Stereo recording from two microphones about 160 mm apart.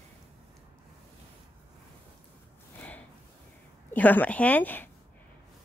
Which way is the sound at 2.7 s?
10° left (ahead or behind).